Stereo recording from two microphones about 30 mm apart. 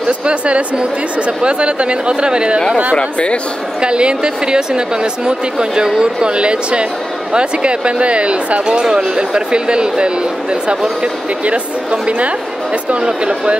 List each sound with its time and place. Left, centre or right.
0.2 s speech: right
3.0 s speech: left
3.8 s speech: right
8.6 s speech: right
11.4 s a woman's voice: right